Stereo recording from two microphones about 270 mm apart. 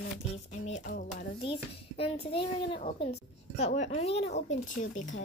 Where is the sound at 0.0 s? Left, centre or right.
Left.